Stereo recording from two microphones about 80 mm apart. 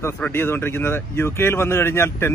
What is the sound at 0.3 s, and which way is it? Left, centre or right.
A man's voice, left.